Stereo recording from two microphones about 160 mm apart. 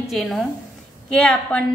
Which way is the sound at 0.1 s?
Centre (ahead or behind).